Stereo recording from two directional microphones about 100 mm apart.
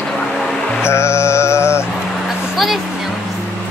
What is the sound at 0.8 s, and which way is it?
Music, 25° left (ahead or behind).